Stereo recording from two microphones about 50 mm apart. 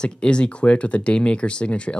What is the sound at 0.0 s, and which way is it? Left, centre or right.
Speech, centre.